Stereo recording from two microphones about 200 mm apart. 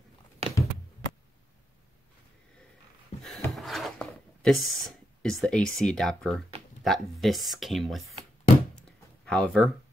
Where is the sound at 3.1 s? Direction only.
35° left (ahead or behind).